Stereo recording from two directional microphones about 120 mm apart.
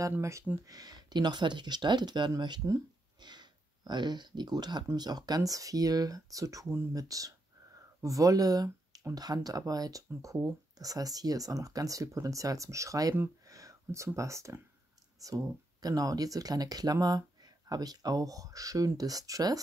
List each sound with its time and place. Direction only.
0.0 s speech: 25° right (ahead or behind)